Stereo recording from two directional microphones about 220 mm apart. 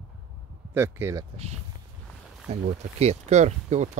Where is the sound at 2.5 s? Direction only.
30° right (ahead or behind).